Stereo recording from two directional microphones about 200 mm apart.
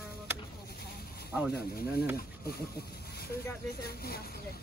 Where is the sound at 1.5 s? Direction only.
50° left (ahead or behind).